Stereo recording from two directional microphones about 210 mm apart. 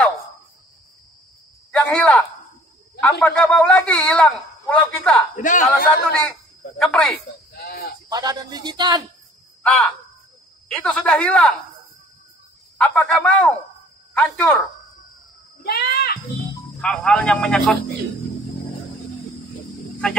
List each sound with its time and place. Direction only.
1.7 s a sound: 5° left (ahead or behind)
3.0 s a man's voice: 5° left (ahead or behind)
5.4 s a man's voice: 40° left (ahead or behind)
6.8 s a man's voice: centre (ahead or behind)
7.5 s a sound: 45° left (ahead or behind)
8.1 s a man's voice: 20° right (ahead or behind)
9.6 s a man's voice: 5° left (ahead or behind)
12.7 s a man's voice: 5° left (ahead or behind)
15.6 s a sound: 50° left (ahead or behind)
16.8 s a man's voice: 5° left (ahead or behind)